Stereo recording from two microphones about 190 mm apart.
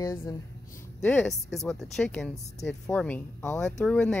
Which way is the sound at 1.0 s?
5° left (ahead or behind).